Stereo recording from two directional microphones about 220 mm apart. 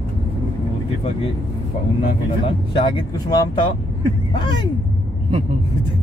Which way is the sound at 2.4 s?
20° left (ahead or behind).